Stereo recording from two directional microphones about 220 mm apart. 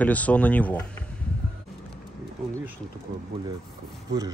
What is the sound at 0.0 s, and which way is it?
Speech, 5° left (ahead or behind).